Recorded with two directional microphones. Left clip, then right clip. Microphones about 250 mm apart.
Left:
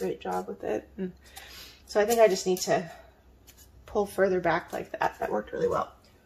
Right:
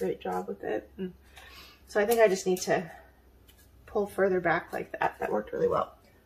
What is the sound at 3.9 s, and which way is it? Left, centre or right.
Speech, centre.